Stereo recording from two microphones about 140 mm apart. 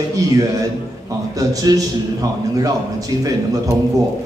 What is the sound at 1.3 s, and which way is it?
A man's voice, 25° right (ahead or behind).